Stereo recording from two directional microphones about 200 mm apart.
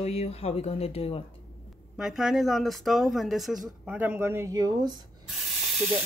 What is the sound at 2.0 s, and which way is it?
Speech, centre (ahead or behind).